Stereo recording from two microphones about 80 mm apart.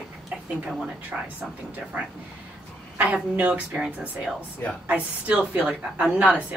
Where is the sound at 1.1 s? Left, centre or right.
Centre.